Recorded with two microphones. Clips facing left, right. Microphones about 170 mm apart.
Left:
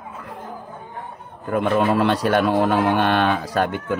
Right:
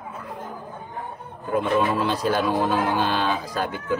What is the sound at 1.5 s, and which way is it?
Speech, 65° left (ahead or behind).